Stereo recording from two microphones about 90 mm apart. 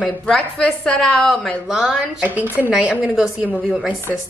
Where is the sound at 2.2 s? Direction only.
20° right (ahead or behind).